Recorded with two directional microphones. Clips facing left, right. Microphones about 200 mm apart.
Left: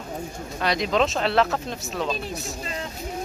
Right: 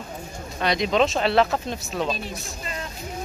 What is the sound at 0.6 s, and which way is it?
Speech, centre (ahead or behind).